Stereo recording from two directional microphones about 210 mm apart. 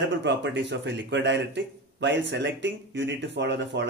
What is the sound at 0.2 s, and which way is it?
A man's voice, 60° right (ahead or behind).